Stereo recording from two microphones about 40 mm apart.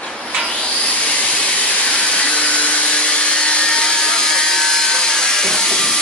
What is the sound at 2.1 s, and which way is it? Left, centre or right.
Wood, left.